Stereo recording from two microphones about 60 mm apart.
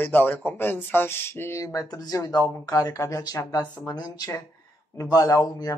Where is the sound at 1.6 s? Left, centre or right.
Left.